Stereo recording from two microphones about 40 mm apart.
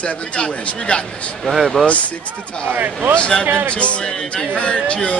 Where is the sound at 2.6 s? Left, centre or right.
Right.